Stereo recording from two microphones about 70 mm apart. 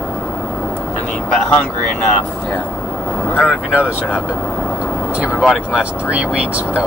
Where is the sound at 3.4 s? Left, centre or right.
Left.